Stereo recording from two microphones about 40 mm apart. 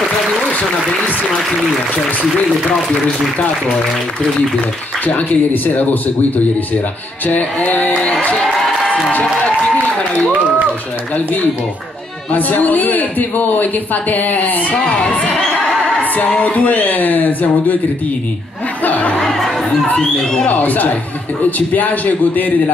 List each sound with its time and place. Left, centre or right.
0.5 s speech: left
5.0 s a woman's voice: left
12.3 s a woman's voice: left
14.8 s crowd: left
16.3 s speech: left
16.5 s a woman's voice: left
18.9 s speech: left
19.2 s chatter: centre
20.4 s a woman's voice: left